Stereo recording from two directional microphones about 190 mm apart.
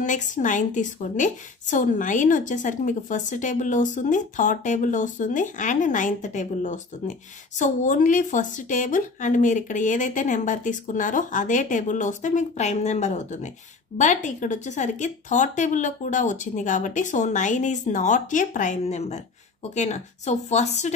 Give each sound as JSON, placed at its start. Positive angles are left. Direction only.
{"t": 0.0, "sound": "a woman's voice", "side_deg": 40}